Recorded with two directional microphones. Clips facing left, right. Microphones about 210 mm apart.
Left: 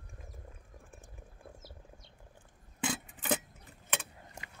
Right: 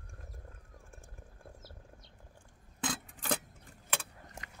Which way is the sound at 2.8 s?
10° left (ahead or behind).